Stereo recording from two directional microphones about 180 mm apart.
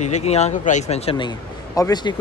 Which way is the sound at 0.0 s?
40° left (ahead or behind).